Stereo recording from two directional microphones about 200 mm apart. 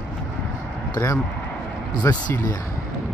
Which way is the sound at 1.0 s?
10° left (ahead or behind).